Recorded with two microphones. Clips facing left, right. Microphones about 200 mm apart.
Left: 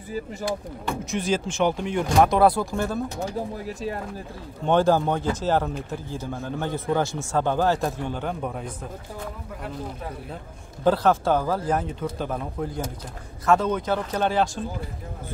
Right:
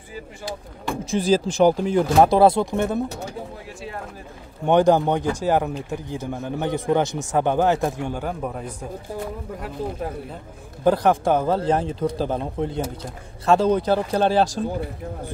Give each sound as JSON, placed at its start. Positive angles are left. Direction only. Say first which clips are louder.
{"t": 1.1, "sound": "speech", "louder": "right 7 dB", "side_deg": -35}
{"t": 3.6, "sound": "speech", "louder": "left 5 dB", "side_deg": 40}
{"t": 4.6, "sound": "speech", "louder": "right 3 dB", "side_deg": -15}
{"t": 10.8, "sound": "speech", "louder": "right 2 dB", "side_deg": -15}